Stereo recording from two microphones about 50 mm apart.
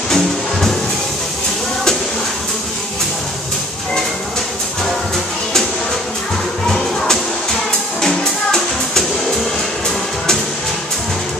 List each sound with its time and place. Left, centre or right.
0.1 s music: centre
8.0 s music: centre